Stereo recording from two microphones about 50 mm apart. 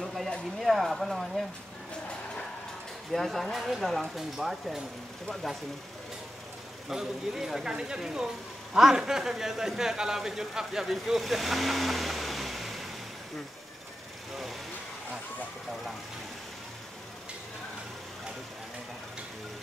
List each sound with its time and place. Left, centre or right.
0.0 s a sound: centre
0.6 s speech: centre
3.1 s speech: centre
6.9 s speech: centre
14.3 s vehicle: centre